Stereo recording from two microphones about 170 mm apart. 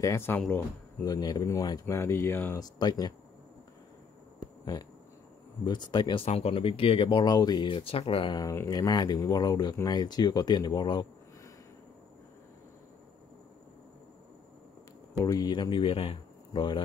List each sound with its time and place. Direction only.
0.0 s speech: 15° left (ahead or behind)
1.0 s speech: 25° left (ahead or behind)
5.7 s speech: 25° left (ahead or behind)
6.2 s speech: 35° left (ahead or behind)
15.2 s speech: 25° left (ahead or behind)